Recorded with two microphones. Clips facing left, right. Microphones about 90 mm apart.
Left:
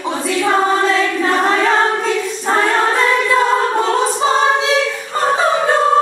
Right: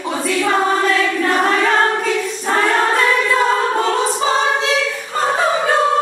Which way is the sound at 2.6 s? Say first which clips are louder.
Even; centre (ahead or behind).